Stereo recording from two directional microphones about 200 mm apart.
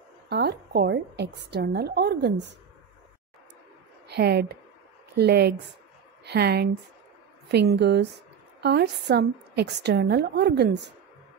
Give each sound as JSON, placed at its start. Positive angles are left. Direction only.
{"t": 0.3, "sound": "a woman's voice", "side_deg": -55}
{"t": 4.1, "sound": "a woman's voice", "side_deg": -55}